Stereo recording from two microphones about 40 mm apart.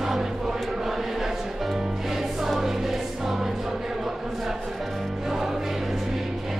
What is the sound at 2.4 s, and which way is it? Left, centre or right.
Music, centre.